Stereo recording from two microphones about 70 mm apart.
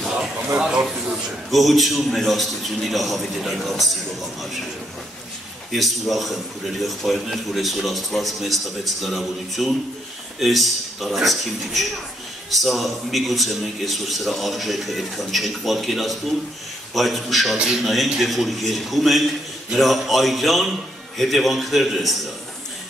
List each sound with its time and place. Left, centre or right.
0.6 s a sound: centre
1.1 s a man's voice: centre
5.7 s a man's voice: centre